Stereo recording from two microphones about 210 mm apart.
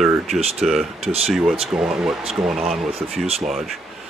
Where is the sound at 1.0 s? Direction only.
30° right (ahead or behind).